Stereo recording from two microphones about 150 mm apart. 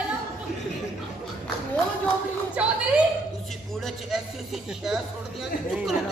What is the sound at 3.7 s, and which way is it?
Speech, centre (ahead or behind).